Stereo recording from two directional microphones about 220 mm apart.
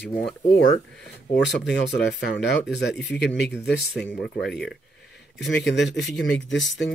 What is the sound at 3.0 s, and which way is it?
Speech, 50° left (ahead or behind).